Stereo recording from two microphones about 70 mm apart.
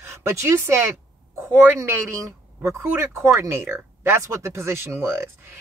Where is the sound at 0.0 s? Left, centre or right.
Right.